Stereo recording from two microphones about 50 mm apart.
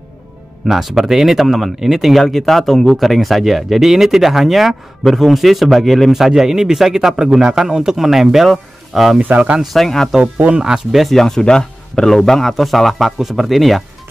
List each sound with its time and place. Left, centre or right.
0.7 s speech: centre
9.2 s speech: right
9.6 s speech: centre
10.2 s speech: right
10.6 s speech: centre
11.0 s speech: centre